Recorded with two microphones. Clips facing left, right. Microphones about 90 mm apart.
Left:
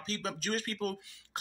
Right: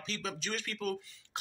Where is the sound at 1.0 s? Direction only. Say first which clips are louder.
Right 7 dB; 65° left (ahead or behind).